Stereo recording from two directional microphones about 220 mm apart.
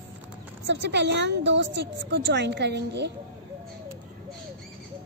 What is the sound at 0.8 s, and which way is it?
A woman's voice, 50° right (ahead or behind).